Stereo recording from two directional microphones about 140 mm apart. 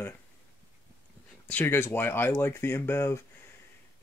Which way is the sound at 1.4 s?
15° left (ahead or behind).